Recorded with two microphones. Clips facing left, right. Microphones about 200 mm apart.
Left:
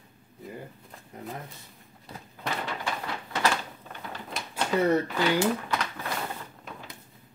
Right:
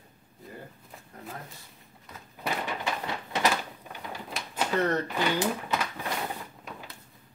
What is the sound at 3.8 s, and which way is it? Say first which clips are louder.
Door: even; 10° right (ahead or behind).